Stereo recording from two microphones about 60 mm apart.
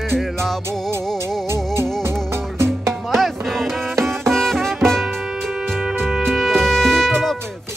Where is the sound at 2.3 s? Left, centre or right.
Right.